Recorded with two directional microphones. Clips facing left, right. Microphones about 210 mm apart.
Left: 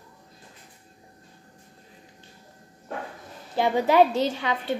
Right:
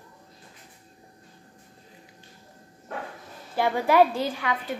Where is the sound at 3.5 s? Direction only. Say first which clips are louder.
Left 1 dB; 20° left (ahead or behind).